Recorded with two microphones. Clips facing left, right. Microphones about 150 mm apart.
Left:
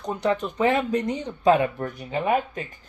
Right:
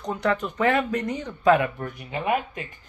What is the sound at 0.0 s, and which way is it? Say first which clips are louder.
Speech: left 1 dB; 10° left (ahead or behind).